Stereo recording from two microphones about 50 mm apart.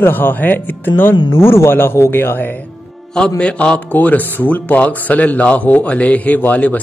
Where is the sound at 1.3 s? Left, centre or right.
Left.